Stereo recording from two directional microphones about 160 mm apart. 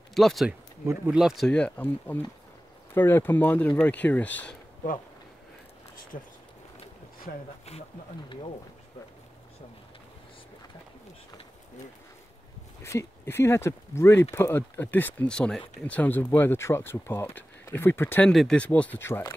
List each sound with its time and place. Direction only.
0.1 s speech: centre (ahead or behind)
6.1 s speech: 55° left (ahead or behind)
8.3 s speech: 35° left (ahead or behind)
12.8 s speech: 15° left (ahead or behind)
18.3 s speech: 5° left (ahead or behind)